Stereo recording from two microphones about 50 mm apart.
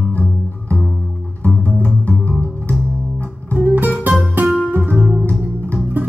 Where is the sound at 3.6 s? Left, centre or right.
Right.